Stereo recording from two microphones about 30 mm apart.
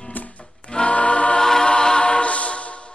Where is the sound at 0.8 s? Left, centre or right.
Left.